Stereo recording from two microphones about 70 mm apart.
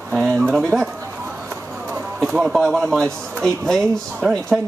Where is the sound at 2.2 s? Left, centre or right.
Centre.